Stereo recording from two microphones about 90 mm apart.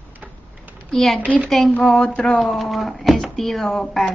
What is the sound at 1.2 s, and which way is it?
Speech, 15° right (ahead or behind).